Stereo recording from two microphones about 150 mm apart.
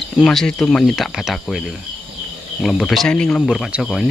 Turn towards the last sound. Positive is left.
turn(degrees=-5)  # may be behind; listen again after turning